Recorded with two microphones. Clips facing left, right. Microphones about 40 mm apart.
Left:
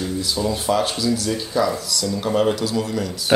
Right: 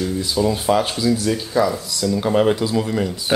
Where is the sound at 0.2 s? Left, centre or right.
Centre.